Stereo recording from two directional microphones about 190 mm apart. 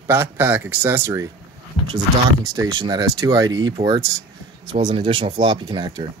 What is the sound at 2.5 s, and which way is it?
Speech, 20° right (ahead or behind).